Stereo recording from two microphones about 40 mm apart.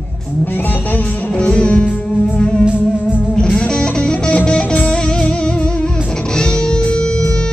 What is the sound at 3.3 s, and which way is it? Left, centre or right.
Music, left.